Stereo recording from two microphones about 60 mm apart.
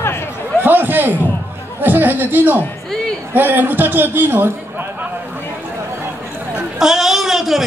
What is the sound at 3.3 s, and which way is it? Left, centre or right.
A man's voice, right.